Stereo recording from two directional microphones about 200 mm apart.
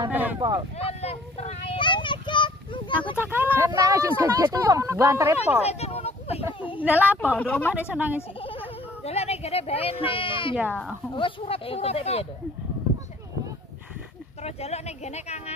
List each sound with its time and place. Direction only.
0.1 s speech: 10° right (ahead or behind)
0.4 s speech: 20° right (ahead or behind)
0.7 s a sound: 30° left (ahead or behind)
3.2 s speech: 10° right (ahead or behind)
5.6 s a sound: 30° left (ahead or behind)
6.8 s speech: 5° right (ahead or behind)
7.2 s speech: 5° left (ahead or behind)
7.9 s speech: 10° right (ahead or behind)
8.4 s a sound: 25° left (ahead or behind)
11.1 s speech: 25° left (ahead or behind)
14.4 s speech: 35° left (ahead or behind)